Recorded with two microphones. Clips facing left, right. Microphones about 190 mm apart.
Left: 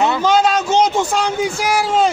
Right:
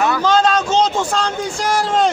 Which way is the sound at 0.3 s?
10° left (ahead or behind).